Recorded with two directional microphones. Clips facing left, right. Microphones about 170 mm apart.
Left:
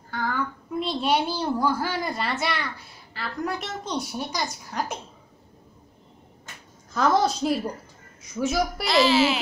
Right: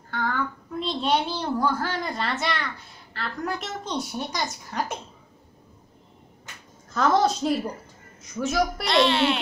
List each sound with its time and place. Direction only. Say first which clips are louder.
0.1 s a woman's voice: even; 5° left (ahead or behind)
6.9 s a woman's voice: even; centre (ahead or behind)